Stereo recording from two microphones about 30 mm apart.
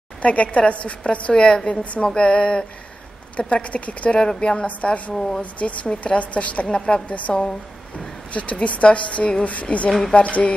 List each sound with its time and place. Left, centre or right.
0.2 s a woman's voice: left
1.3 s speech: left
3.3 s a woman's voice: left
4.4 s speech: left
5.1 s speech: centre
5.4 s a woman's voice: left
9.8 s speech: centre
10.1 s a woman's voice: left